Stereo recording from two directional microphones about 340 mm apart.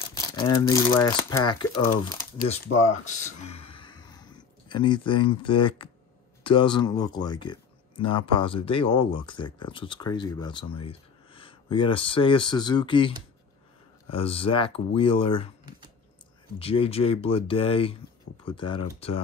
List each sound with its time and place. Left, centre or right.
0.1 s speech: centre
16.5 s speech: centre